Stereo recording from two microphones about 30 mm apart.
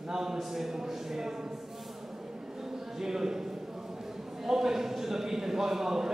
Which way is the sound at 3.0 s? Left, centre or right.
Centre.